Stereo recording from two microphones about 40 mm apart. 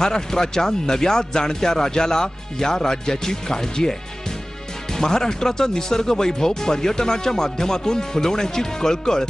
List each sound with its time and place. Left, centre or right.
0.0 s speech: centre
4.9 s speech: centre